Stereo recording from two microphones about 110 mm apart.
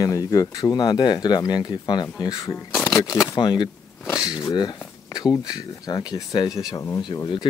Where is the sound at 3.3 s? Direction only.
40° left (ahead or behind).